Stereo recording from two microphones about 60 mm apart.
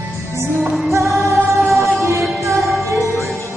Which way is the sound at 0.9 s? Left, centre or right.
Right.